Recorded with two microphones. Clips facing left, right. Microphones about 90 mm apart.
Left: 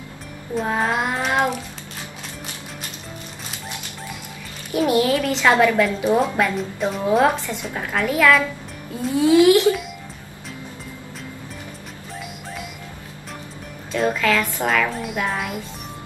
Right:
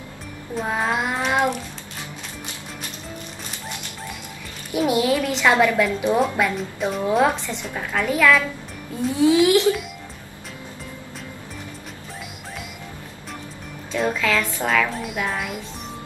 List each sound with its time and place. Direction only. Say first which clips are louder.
0.6 s child singing: left 2 dB; centre (ahead or behind)
4.7 s a woman's voice: left 1 dB; 5° right (ahead or behind)
13.9 s a woman's voice: left 2 dB; centre (ahead or behind)